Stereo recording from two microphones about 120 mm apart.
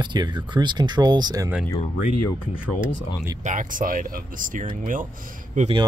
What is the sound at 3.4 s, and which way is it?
Speech, 90° right.